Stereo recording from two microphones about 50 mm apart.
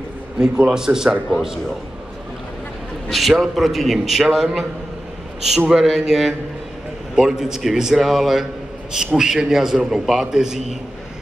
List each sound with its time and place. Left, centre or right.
0.4 s a man's voice: centre
3.1 s a man's voice: centre
5.7 s a man's voice: centre